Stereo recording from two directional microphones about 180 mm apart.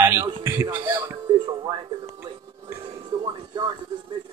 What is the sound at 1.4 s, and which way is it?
Music, 25° right (ahead or behind).